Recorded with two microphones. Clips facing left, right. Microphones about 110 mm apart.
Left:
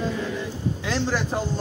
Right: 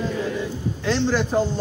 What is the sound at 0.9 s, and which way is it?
Speech, 5° left (ahead or behind).